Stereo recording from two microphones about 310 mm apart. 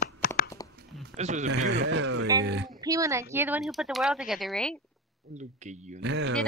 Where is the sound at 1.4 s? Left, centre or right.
Right.